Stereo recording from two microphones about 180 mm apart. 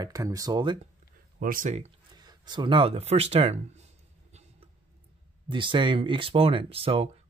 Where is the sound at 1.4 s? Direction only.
50° right (ahead or behind).